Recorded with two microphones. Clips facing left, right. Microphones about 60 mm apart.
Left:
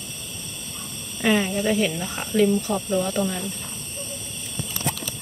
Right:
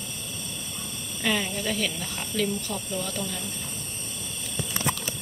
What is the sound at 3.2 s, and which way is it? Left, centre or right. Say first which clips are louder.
Speech: left 9 dB; left.